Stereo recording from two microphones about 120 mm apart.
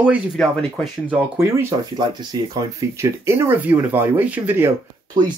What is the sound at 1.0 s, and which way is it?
Speech, 15° right (ahead or behind).